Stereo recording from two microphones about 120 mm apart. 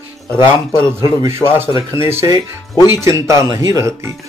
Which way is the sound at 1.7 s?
45° left (ahead or behind).